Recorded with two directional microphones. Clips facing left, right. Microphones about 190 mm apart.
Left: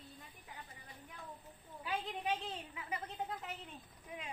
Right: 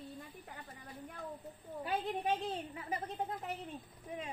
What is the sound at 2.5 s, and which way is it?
A child's voice, 40° right (ahead or behind).